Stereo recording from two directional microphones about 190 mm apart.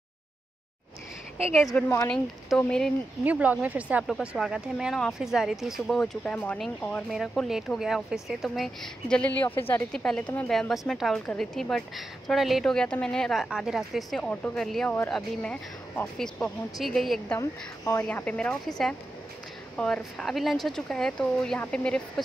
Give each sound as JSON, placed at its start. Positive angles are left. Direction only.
{"t": 1.8, "sound": "speech", "side_deg": 10}
{"t": 3.3, "sound": "speech", "side_deg": -10}
{"t": 17.4, "sound": "speech", "side_deg": 15}